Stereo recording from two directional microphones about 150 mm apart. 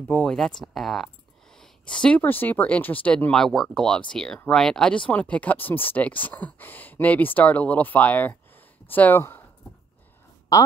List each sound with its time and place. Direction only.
0.1 s speech: 5° left (ahead or behind)
10.5 s a woman's voice: 20° left (ahead or behind)